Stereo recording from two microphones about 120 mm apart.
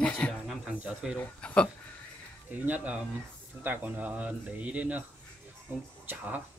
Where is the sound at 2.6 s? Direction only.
15° right (ahead or behind).